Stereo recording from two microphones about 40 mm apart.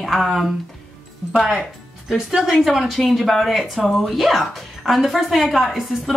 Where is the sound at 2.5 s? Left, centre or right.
Centre.